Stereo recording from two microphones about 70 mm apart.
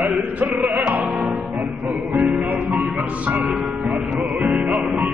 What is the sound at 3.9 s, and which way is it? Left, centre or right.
Music, centre.